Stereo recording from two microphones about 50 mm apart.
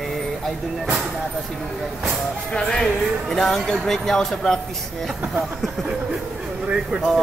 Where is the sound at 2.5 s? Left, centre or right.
Centre.